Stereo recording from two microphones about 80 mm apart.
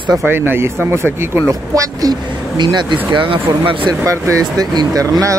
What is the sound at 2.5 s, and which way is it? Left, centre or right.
Speech, right.